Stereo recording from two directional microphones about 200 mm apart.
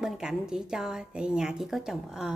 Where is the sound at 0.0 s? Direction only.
5° right (ahead or behind).